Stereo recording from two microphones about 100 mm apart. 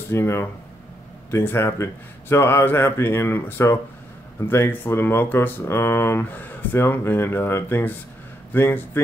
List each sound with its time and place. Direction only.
0.1 s speech: 25° left (ahead or behind)